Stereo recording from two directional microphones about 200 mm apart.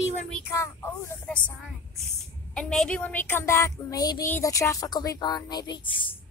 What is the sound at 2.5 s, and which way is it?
Speech, 5° left (ahead or behind).